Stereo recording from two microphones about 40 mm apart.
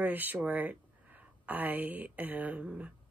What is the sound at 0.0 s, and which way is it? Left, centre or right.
Speech, right.